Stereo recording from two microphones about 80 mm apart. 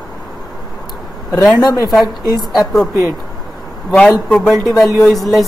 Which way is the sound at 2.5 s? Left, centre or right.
Centre.